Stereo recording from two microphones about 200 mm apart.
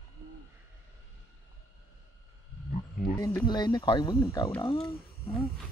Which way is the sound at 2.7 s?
45° left (ahead or behind).